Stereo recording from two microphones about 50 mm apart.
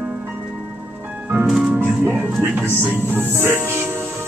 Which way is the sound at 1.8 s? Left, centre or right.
Right.